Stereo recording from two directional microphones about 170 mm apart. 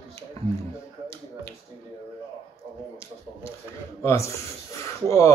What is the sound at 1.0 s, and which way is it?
Finger snapping, 15° left (ahead or behind).